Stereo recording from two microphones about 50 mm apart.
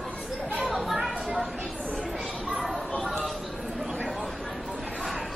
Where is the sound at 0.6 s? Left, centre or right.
Centre.